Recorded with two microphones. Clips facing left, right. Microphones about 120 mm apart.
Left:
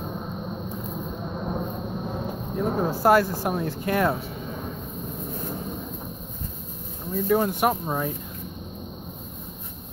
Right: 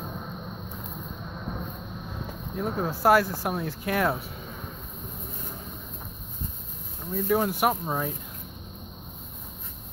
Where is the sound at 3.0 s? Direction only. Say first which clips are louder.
Left 1 dB; centre (ahead or behind).